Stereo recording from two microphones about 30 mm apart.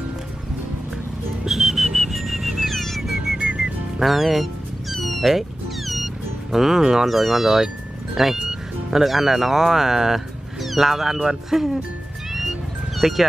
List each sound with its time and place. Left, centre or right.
1.5 s whistle: centre
2.7 s music: centre
3.4 s music: right
4.0 s speech: centre
4.9 s cat: centre
6.5 s speech: centre
12.3 s music: centre